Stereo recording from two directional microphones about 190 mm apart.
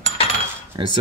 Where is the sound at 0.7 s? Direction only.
25° right (ahead or behind).